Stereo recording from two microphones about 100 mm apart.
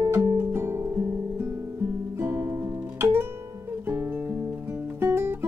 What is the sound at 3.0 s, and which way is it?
Guitar, 20° right (ahead or behind).